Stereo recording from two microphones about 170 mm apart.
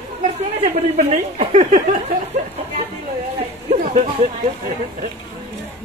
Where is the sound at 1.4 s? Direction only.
40° right (ahead or behind).